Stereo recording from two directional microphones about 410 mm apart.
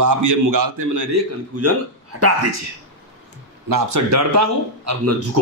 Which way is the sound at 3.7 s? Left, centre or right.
Right.